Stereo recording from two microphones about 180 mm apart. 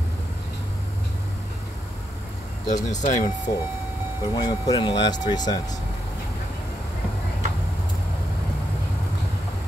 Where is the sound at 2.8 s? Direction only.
40° left (ahead or behind).